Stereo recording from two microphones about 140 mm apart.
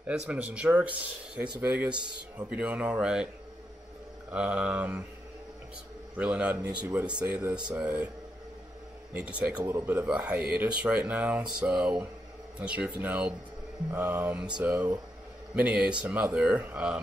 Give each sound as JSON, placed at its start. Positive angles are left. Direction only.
{"t": 0.0, "sound": "a man's voice", "side_deg": -10}
{"t": 4.3, "sound": "a man's voice", "side_deg": -10}
{"t": 6.1, "sound": "a man's voice", "side_deg": -10}
{"t": 9.1, "sound": "a man's voice", "side_deg": -10}